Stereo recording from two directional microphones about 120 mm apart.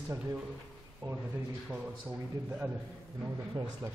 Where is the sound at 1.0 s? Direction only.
40° right (ahead or behind).